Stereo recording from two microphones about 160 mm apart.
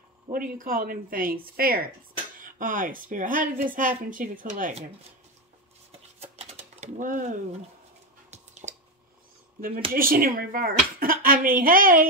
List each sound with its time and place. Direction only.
0.3 s speech: 60° right (ahead or behind)
5.9 s a sound: 40° right (ahead or behind)
9.9 s speech: 65° right (ahead or behind)